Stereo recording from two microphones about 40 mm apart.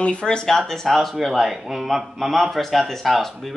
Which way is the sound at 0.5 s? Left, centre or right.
Centre.